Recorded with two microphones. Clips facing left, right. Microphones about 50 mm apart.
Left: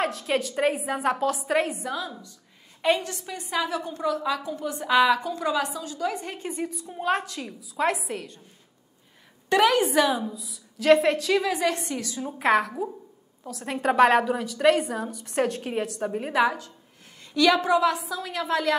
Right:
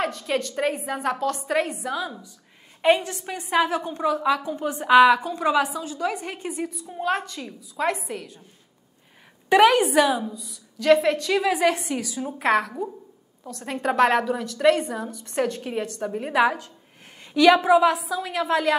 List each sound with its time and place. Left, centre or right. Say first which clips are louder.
0.0 s a woman's voice: even; centre
2.0 s a woman's voice: right 3 dB; centre
3.5 s a woman's voice: right 6 dB; right; by 8.4 s centre
9.5 s a woman's voice: right 4 dB; centre
17.2 s a woman's voice: right 4 dB; right